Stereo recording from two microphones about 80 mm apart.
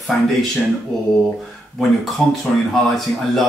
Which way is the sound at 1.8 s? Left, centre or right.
Centre.